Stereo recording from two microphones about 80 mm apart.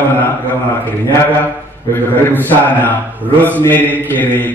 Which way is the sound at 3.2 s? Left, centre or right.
Right.